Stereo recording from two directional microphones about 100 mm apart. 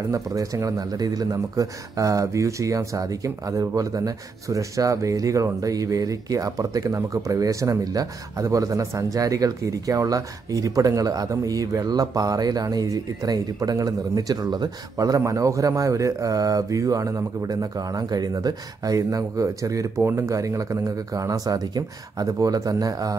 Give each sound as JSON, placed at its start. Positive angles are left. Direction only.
{"t": 0.1, "sound": "speech", "side_deg": -35}